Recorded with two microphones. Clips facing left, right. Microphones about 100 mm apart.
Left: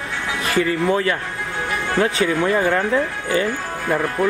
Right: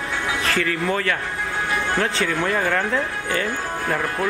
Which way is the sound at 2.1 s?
5° left (ahead or behind).